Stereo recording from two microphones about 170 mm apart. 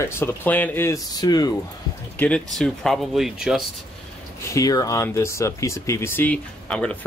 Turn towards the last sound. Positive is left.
turn(degrees=5)  # may be behind; listen again after turning